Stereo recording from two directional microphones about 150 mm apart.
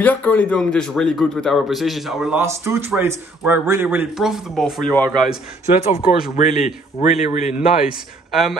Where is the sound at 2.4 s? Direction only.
15° right (ahead or behind); by 5.4 s 5° left (ahead or behind).